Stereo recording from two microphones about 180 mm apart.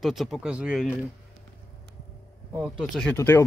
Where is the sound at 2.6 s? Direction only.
Centre (ahead or behind).